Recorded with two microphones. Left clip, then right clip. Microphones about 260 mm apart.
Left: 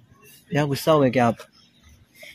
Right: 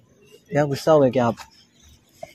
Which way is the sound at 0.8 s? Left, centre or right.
Centre.